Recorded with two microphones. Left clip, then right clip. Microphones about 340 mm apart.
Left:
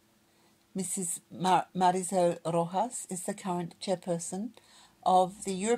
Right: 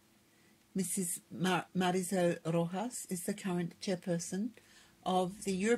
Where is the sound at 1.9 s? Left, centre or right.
Left.